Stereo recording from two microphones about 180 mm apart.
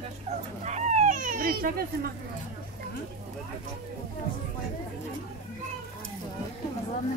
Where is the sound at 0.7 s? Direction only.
40° right (ahead or behind); by 1.9 s 55° right (ahead or behind).